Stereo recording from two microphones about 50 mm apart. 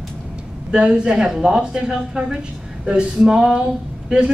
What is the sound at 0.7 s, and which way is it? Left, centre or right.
A woman's voice, centre.